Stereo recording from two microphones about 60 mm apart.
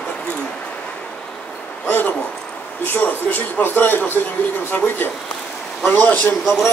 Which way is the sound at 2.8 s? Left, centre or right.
Left.